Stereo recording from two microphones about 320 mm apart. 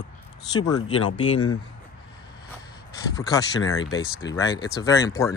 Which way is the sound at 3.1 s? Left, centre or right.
Centre.